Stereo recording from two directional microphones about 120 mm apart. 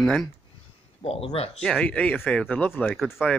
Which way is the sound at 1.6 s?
5° left (ahead or behind).